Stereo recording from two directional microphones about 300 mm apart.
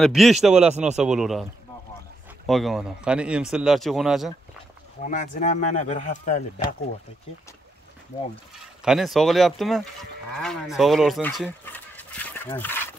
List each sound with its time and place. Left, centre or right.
0.0 s speech: centre
5.0 s speech: left
8.8 s speech: centre